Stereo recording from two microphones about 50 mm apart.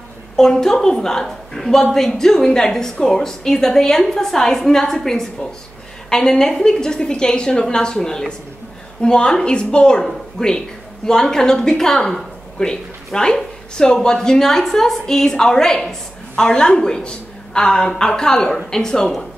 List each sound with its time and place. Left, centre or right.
0.4 s a woman's voice: centre